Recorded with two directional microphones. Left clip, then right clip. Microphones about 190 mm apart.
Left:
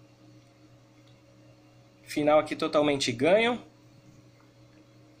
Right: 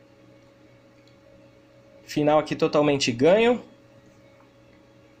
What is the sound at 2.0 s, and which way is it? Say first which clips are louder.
Speech: right 2 dB; 25° right (ahead or behind).